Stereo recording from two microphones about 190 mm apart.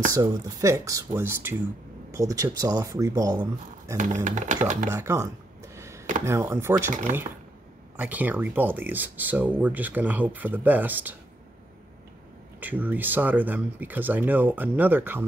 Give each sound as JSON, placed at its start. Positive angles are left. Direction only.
{"t": 0.1, "sound": "speech", "side_deg": -15}
{"t": 3.9, "sound": "speech", "side_deg": -40}
{"t": 4.9, "sound": "speech", "side_deg": -15}
{"t": 8.0, "sound": "speech", "side_deg": -10}
{"t": 12.5, "sound": "speech", "side_deg": -10}